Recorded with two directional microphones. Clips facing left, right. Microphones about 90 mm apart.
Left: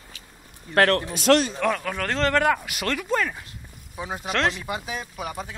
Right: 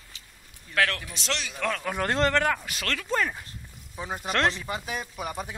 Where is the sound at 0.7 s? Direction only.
45° left (ahead or behind).